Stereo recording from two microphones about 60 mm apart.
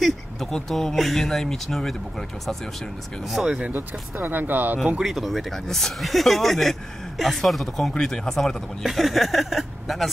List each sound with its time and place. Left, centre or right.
0.0 s speech: centre
3.3 s speech: centre
3.7 s speech: right
5.0 s speech: centre